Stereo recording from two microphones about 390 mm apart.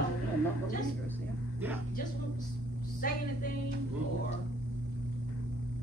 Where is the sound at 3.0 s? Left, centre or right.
Left.